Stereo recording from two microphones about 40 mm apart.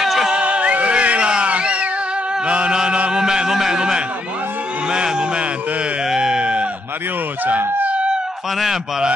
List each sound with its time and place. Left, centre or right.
0.0 s music: centre
0.3 s music: right
2.4 s chant: right
3.1 s a sound: centre
7.4 s speech: right